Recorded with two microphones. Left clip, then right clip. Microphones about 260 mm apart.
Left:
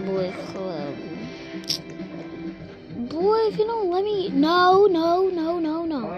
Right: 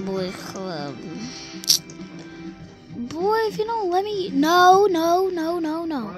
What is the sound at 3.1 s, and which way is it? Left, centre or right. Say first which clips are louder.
A child's voice: left 1 dB; right.